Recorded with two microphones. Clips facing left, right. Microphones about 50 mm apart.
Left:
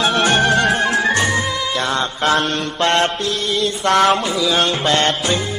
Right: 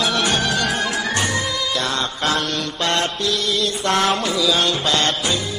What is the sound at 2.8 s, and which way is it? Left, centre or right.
Music, left.